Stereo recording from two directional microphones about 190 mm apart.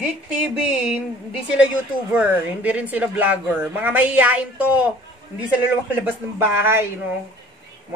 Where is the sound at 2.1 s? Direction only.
5° right (ahead or behind).